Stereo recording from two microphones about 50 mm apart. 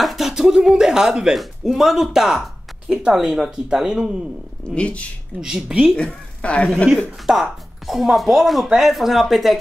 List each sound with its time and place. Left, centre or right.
0.0 s speech: centre
0.3 s speech: centre
4.7 s speech: left
5.4 s speech: centre
5.9 s a woman's voice: left
7.2 s speech: centre